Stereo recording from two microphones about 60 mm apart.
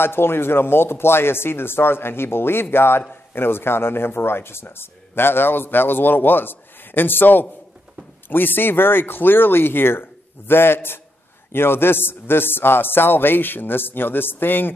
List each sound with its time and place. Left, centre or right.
0.0 s speech: left